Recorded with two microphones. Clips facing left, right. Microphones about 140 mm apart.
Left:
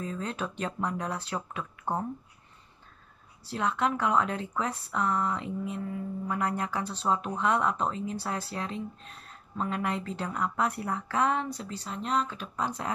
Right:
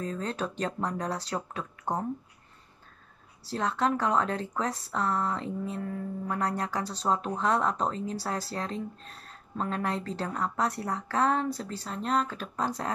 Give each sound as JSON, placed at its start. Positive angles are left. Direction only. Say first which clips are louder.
{"t": 0.0, "sound": "speech", "louder": "right 2 dB", "side_deg": -40}
{"t": 3.5, "sound": "speech", "louder": "right 1 dB", "side_deg": -40}